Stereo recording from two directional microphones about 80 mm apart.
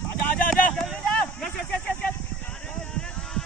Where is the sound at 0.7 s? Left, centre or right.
Centre.